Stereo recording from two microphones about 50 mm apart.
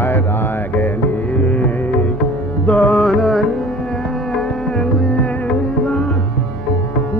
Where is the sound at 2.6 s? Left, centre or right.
Centre.